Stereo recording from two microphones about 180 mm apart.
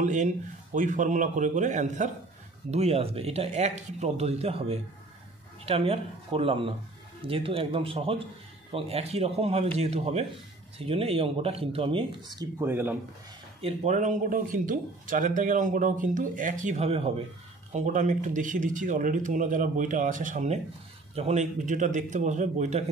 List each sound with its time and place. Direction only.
0.0 s speech: 45° right (ahead or behind); by 12.9 s 10° right (ahead or behind)
13.6 s speech: 35° right (ahead or behind)